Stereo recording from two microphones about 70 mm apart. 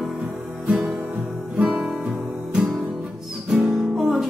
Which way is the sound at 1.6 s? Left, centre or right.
Centre.